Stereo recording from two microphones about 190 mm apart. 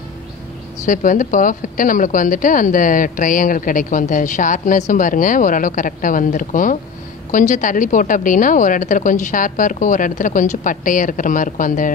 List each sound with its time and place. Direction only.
0.8 s a woman's voice: 45° left (ahead or behind)